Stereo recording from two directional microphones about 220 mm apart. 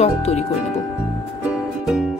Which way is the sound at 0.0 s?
30° left (ahead or behind).